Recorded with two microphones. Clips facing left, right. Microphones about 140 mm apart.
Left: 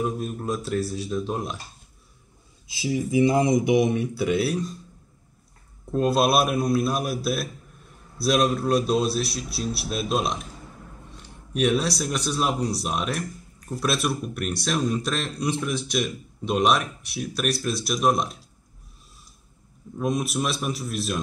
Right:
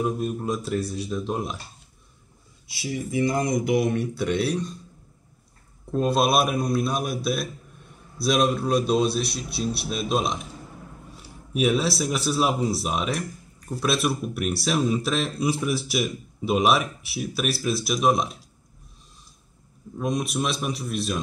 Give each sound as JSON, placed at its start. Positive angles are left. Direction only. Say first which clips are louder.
{"t": 0.0, "sound": "speech", "louder": "right 2 dB", "side_deg": 0}
{"t": 2.7, "sound": "speech", "louder": "left 4 dB", "side_deg": 20}
{"t": 3.9, "sound": "speech", "louder": "left 1 dB", "side_deg": 5}
{"t": 5.9, "sound": "speech", "louder": "left 1 dB", "side_deg": 0}
{"t": 20.0, "sound": "speech", "louder": "left 1 dB", "side_deg": 0}